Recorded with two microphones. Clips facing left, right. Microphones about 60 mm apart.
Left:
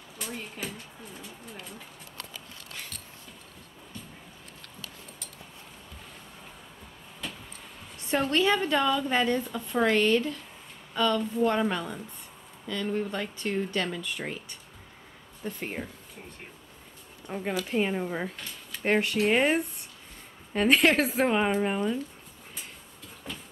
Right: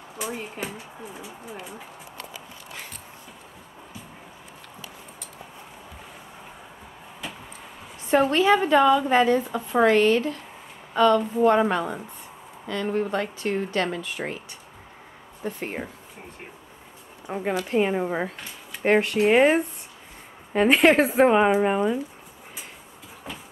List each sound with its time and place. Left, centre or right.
0.2 s a woman's voice: centre
1.0 s a sound: centre
8.0 s a woman's voice: centre
15.4 s speech: centre
17.3 s a woman's voice: centre
18.4 s a woman's voice: centre